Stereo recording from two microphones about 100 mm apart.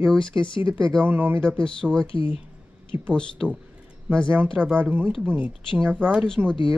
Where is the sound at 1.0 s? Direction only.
20° right (ahead or behind).